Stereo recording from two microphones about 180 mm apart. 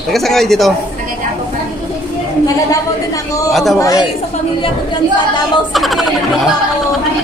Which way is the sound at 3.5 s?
Centre (ahead or behind).